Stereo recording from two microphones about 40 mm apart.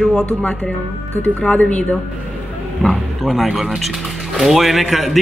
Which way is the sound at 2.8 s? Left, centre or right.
Centre.